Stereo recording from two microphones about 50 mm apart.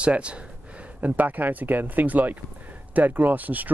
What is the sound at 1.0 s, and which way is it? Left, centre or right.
Speech, right.